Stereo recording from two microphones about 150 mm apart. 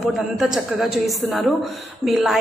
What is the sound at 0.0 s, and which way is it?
A woman's voice, 5° right (ahead or behind).